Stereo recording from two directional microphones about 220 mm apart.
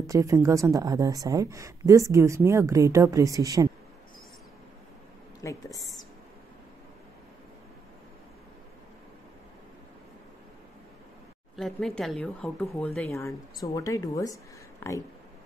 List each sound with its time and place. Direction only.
0.0 s a woman's voice: 15° right (ahead or behind)
5.4 s speech: 15° left (ahead or behind)
11.5 s speech: centre (ahead or behind)
13.6 s speech: 15° left (ahead or behind)